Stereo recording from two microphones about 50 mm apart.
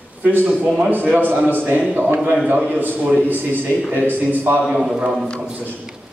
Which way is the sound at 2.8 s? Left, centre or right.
Right.